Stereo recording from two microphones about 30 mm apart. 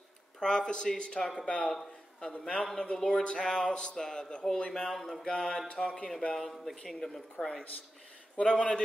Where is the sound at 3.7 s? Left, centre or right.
Left.